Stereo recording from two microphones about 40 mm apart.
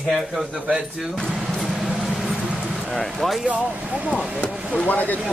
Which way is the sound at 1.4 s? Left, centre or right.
Centre.